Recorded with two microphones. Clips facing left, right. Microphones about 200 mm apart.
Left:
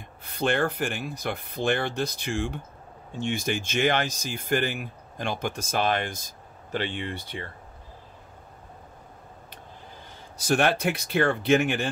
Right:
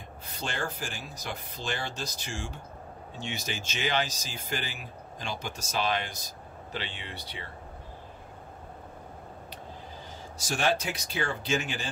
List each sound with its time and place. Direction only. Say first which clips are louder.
0.3 s speech: left 10 dB; 60° left (ahead or behind)
10.3 s speech: left 5 dB; 60° left (ahead or behind)